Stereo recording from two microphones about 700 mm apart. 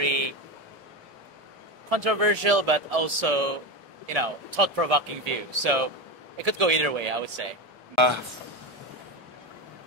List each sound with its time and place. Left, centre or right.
0.0 s a sound: right
1.9 s speech: right
7.9 s speech: right